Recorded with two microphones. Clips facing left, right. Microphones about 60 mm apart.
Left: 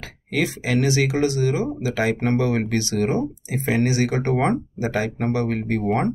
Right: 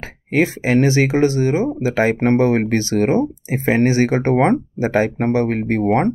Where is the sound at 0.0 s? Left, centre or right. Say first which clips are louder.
Right 6 dB; right.